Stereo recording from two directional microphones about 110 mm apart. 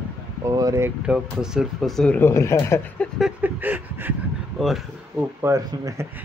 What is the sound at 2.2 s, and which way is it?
Speech, 25° left (ahead or behind).